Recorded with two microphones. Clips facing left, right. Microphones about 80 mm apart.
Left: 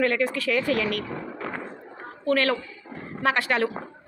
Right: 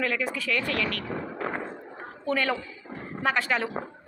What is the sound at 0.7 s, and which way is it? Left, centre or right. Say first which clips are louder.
Speech: left 4 dB; right.